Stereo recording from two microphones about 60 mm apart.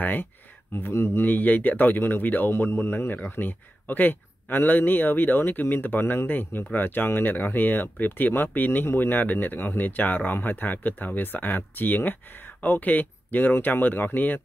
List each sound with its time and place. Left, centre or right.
0.0 s speech: left
0.7 s speech: left
2.5 s speech: left